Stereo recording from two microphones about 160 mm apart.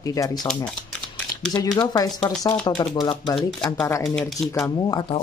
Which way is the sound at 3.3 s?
5° left (ahead or behind).